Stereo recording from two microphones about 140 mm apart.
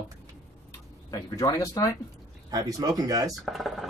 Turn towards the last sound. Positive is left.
turn(degrees=0)  # may be behind; listen again after turning